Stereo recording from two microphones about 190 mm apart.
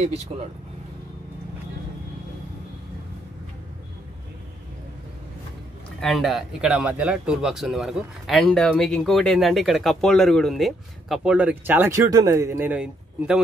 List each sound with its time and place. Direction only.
0.3 s speech: 35° right (ahead or behind)
5.9 s speech: centre (ahead or behind)